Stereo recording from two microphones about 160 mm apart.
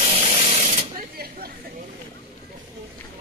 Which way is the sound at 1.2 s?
70° right (ahead or behind).